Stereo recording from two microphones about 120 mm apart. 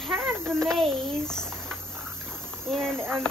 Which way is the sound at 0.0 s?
Centre (ahead or behind).